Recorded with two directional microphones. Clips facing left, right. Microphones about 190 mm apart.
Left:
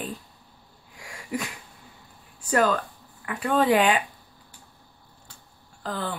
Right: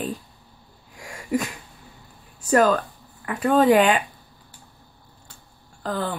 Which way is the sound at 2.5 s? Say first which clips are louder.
Right 4 dB; 45° right (ahead or behind).